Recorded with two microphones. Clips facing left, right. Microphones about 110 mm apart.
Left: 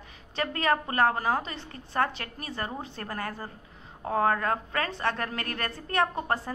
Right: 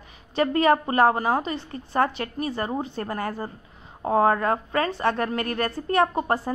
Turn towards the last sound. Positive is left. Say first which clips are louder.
# right 5 dB
turn(degrees=-20)  # may be behind; listen again after turning